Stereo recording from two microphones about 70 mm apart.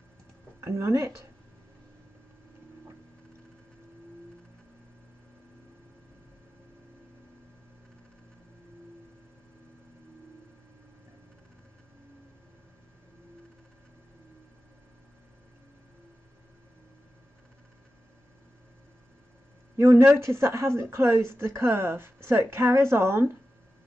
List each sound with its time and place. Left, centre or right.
0.6 s speech: right
19.8 s speech: right